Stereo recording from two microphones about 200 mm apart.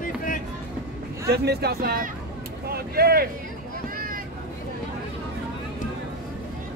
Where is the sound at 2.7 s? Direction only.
50° right (ahead or behind).